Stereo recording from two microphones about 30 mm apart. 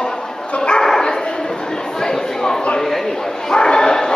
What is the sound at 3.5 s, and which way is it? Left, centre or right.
Bow-wow, left.